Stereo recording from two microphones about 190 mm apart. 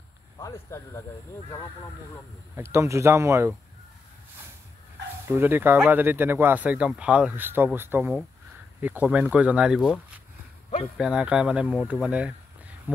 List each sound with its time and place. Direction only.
0.4 s speech: 15° left (ahead or behind)
2.5 s speech: 15° right (ahead or behind)
5.2 s speech: 10° right (ahead or behind)
11.0 s speech: 5° right (ahead or behind)